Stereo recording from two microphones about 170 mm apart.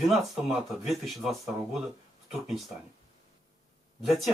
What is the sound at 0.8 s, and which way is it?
Speech, centre (ahead or behind).